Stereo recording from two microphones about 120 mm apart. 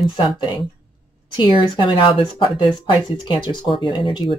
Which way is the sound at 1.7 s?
40° left (ahead or behind).